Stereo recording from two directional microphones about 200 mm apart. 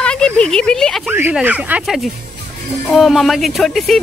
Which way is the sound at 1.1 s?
10° right (ahead or behind).